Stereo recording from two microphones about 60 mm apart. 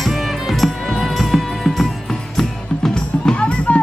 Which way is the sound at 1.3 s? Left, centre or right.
Centre.